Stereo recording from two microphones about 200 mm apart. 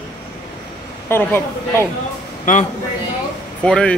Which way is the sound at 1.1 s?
10° left (ahead or behind).